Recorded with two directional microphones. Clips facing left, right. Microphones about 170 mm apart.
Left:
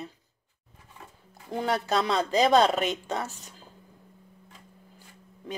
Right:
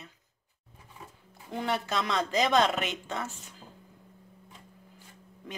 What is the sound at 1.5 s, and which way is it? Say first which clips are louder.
Speech: left 4 dB; 35° left (ahead or behind).